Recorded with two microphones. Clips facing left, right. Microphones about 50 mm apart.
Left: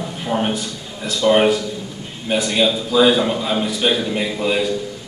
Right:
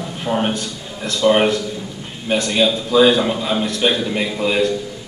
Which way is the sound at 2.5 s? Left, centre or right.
Centre.